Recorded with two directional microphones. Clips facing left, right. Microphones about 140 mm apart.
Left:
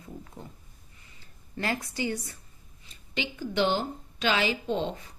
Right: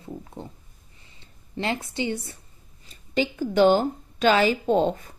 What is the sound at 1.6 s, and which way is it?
Speech, 25° right (ahead or behind).